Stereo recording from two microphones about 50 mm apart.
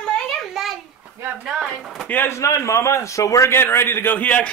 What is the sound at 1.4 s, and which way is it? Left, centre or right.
Speech, centre.